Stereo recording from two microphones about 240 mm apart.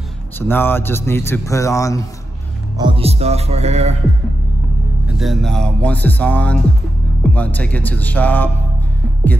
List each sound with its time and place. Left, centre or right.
0.4 s a man's voice: centre
2.8 s speech: right
5.0 s a man's voice: centre